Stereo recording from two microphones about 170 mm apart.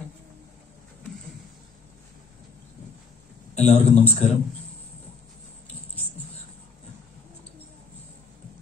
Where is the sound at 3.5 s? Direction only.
35° left (ahead or behind).